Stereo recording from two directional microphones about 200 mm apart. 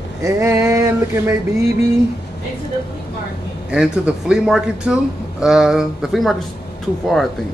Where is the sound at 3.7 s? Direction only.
5° right (ahead or behind).